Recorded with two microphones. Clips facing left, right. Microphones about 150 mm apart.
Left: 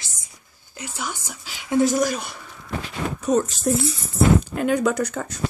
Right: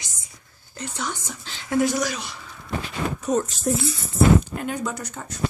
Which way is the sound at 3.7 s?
75° left (ahead or behind).